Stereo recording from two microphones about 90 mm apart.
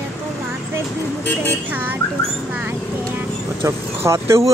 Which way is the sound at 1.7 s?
20° right (ahead or behind).